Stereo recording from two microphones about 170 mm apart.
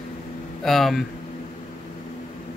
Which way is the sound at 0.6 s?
Centre (ahead or behind).